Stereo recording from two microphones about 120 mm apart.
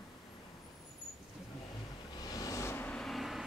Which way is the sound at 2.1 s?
30° left (ahead or behind).